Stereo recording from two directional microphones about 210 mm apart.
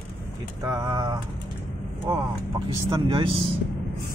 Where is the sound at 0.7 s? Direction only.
20° right (ahead or behind).